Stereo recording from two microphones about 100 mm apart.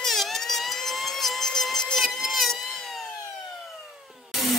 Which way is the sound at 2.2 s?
Centre (ahead or behind).